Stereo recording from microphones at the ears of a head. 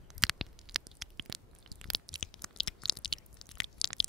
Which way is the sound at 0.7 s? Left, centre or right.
Right.